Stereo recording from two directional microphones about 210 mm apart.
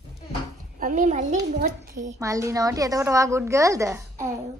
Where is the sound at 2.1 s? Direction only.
15° right (ahead or behind).